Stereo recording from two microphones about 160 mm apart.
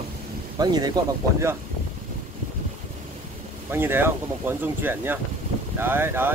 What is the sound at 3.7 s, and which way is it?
Speech, 15° right (ahead or behind).